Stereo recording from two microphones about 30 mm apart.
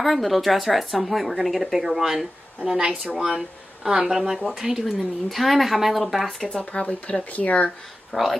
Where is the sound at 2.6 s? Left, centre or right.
Right.